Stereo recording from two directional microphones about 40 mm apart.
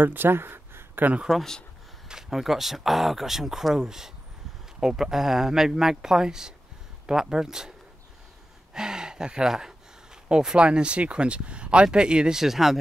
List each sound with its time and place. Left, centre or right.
0.0 s a sound: right
1.3 s speech: centre
8.7 s speech: centre